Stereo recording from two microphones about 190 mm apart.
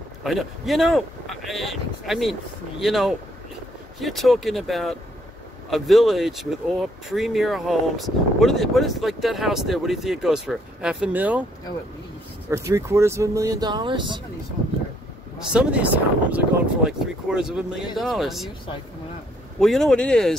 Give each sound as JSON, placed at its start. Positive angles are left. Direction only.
{"t": 0.2, "sound": "speech", "side_deg": 0}
{"t": 12.4, "sound": "speech", "side_deg": -15}
{"t": 15.3, "sound": "speech", "side_deg": -5}
{"t": 19.6, "sound": "speech", "side_deg": 0}